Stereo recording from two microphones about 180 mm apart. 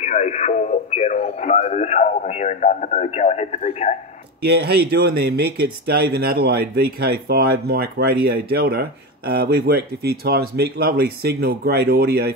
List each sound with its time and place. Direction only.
0.0 s speech: 40° left (ahead or behind)
4.5 s speech: 65° right (ahead or behind)